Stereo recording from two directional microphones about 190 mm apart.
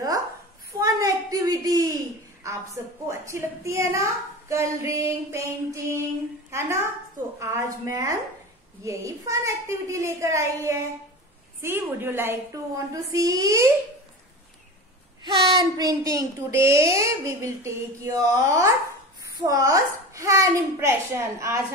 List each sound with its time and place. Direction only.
0.7 s a sound: 15° right (ahead or behind)
3.1 s a child's voice: 15° right (ahead or behind)
15.2 s a child's voice: 25° right (ahead or behind)